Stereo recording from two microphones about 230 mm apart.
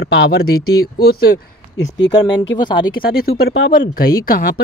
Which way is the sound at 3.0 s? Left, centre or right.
Left.